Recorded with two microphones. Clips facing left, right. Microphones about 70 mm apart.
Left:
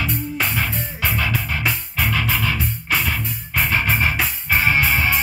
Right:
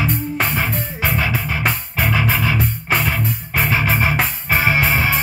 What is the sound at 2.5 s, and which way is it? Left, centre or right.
Music, right.